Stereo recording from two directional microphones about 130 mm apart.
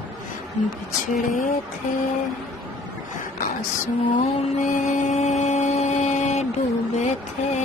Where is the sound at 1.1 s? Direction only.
85° left.